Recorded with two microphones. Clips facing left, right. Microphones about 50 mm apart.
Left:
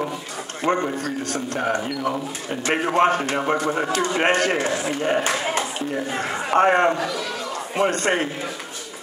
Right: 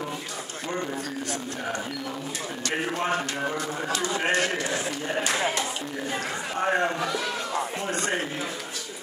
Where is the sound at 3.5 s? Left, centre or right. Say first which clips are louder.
Left 7 dB; left.